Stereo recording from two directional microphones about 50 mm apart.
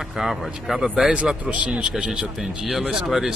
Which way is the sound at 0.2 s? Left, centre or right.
Centre.